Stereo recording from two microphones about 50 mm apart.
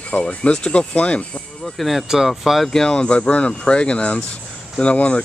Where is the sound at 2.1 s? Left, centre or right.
Centre.